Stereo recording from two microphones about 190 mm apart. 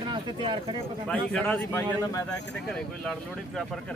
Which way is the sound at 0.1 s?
25° right (ahead or behind).